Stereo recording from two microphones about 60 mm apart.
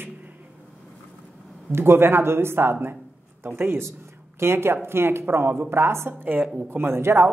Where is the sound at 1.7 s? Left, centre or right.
Right.